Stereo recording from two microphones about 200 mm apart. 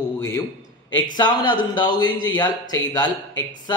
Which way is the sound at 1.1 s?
20° left (ahead or behind).